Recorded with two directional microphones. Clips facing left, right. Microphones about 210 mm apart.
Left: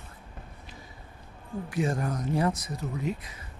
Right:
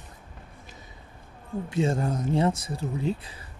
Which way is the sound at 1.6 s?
25° right (ahead or behind).